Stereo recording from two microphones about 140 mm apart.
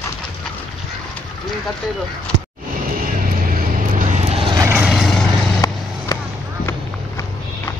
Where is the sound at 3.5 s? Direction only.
65° right (ahead or behind).